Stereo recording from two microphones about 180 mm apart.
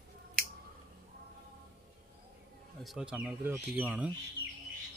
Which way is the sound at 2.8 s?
5° right (ahead or behind).